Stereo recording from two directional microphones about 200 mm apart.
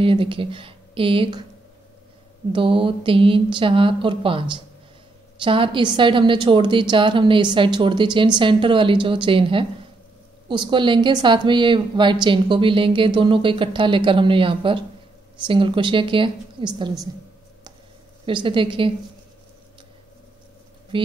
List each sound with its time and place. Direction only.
0.0 s a woman's voice: 25° right (ahead or behind)
2.5 s a woman's voice: 25° right (ahead or behind)
18.2 s a woman's voice: 25° right (ahead or behind)
20.9 s speech: 25° right (ahead or behind)